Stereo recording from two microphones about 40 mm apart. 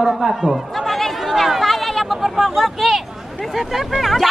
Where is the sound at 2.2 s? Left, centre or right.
Centre.